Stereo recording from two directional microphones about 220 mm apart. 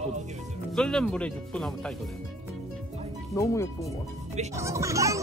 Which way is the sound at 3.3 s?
15° left (ahead or behind).